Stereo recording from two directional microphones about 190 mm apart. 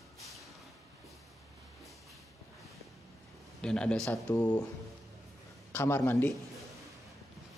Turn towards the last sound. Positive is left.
turn(degrees=10)  # may be behind; listen again after turning